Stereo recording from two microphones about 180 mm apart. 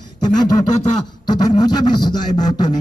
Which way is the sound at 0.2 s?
20° left (ahead or behind).